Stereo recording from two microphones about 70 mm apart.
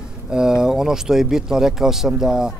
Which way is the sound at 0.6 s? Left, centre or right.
Centre.